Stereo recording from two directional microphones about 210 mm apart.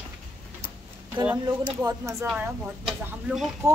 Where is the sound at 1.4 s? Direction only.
15° right (ahead or behind).